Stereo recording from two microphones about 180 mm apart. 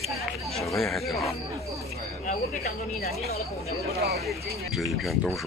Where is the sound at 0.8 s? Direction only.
Centre (ahead or behind).